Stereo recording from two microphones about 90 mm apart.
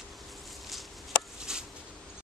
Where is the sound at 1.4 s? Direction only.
5° right (ahead or behind).